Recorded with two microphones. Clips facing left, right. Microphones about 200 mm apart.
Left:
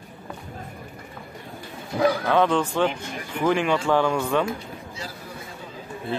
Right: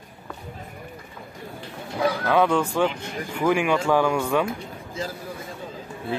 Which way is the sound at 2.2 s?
5° right (ahead or behind).